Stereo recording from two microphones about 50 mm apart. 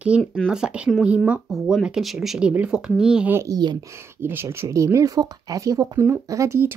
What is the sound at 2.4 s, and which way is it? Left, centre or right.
Speech, right.